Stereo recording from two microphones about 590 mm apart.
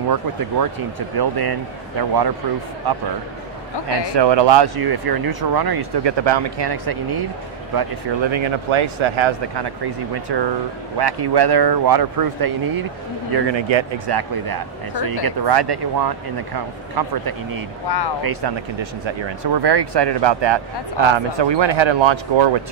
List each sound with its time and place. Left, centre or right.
0.1 s speech: right
13.3 s speech: right
17.8 s speech: left
18.2 s speech: right